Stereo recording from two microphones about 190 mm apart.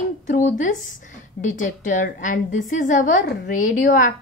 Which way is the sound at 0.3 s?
45° left (ahead or behind).